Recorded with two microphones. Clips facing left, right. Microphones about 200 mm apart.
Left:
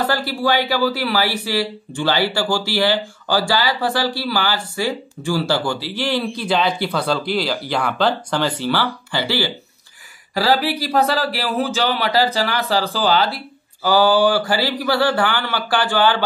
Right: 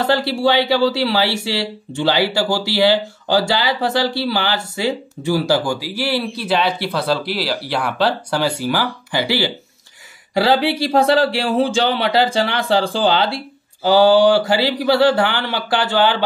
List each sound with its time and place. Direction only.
0.0 s speech: 25° right (ahead or behind)